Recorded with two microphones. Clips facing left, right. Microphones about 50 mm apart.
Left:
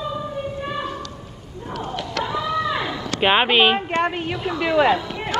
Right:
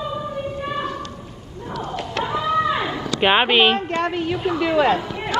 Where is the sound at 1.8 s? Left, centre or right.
Right.